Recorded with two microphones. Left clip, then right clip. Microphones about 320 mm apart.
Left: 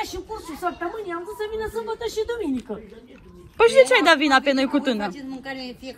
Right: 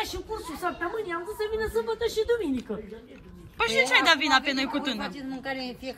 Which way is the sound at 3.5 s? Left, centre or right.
Centre.